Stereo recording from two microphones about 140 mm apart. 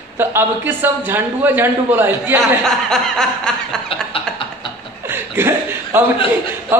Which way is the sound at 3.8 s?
40° left (ahead or behind).